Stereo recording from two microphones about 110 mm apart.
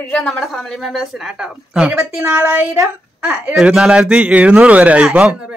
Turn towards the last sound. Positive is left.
turn(degrees=-10)  # may be behind; listen again after turning